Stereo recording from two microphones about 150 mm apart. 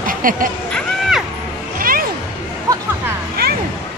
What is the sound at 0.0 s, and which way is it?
Music, 65° right (ahead or behind).